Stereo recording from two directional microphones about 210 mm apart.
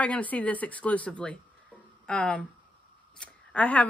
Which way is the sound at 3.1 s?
5° left (ahead or behind).